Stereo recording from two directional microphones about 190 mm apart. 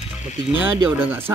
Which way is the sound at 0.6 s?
10° right (ahead or behind).